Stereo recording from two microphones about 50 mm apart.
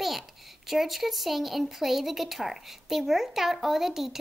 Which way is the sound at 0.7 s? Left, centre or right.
Centre.